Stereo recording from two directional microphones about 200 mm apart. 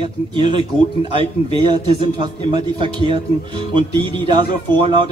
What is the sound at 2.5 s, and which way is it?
Speech, 25° right (ahead or behind).